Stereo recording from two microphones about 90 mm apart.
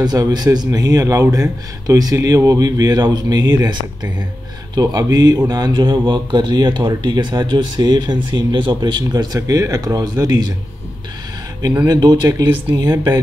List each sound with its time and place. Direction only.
0.0 s speech: 50° right (ahead or behind)
11.9 s speech: 55° right (ahead or behind)
12.8 s speech: 25° right (ahead or behind)